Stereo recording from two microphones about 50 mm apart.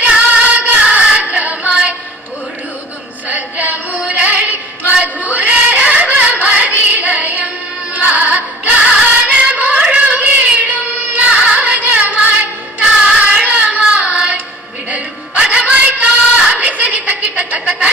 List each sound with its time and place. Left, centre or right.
0.3 s music: right
3.3 s music: right
4.0 s female singing: right
7.9 s music: right
9.8 s child singing: right
14.9 s a sound: right
16.5 s chuckle: right